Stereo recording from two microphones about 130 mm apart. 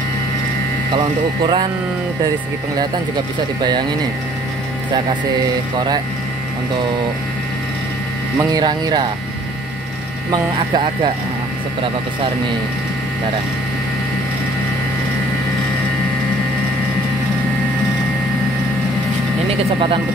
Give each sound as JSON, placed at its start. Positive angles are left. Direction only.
{"t": 0.9, "sound": "speech", "side_deg": -35}
{"t": 8.4, "sound": "speech", "side_deg": -30}
{"t": 10.3, "sound": "speech", "side_deg": -35}
{"t": 19.5, "sound": "speech", "side_deg": -40}